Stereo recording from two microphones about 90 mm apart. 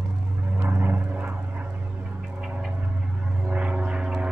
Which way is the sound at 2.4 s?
10° right (ahead or behind).